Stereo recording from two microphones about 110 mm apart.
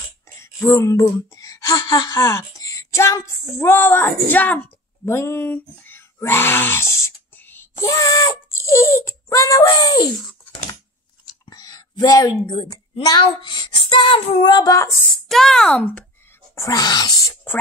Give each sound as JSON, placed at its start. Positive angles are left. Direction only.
{"t": 0.4, "sound": "speech", "side_deg": 25}
{"t": 11.4, "sound": "a woman's voice", "side_deg": 40}
{"t": 14.5, "sound": "child singing", "side_deg": 30}
{"t": 15.0, "sound": "a child's voice", "side_deg": 0}
{"t": 16.5, "sound": "speech", "side_deg": 30}